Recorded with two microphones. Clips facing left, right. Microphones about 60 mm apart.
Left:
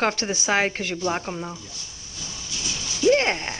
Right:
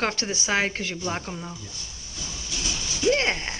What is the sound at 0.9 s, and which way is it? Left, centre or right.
Speech, left.